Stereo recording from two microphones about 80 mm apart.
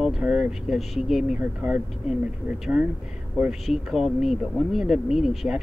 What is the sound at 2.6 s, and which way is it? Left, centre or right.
Speech, centre.